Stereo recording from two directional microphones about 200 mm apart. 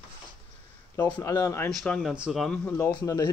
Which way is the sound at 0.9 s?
10° left (ahead or behind).